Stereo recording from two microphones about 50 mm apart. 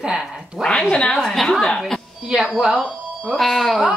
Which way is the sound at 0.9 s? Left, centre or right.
Centre.